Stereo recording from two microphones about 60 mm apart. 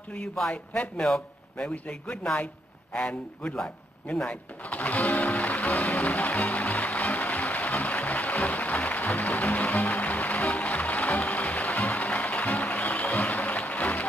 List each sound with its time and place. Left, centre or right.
1.0 s a man's voice: centre
5.1 s music: left